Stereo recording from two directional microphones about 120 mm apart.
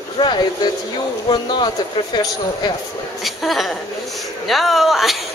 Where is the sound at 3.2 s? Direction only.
Centre (ahead or behind).